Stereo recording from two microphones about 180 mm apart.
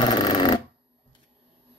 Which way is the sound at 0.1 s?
25° left (ahead or behind).